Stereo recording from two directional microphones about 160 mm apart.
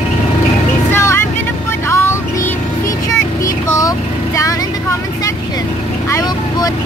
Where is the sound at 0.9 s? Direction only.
15° left (ahead or behind).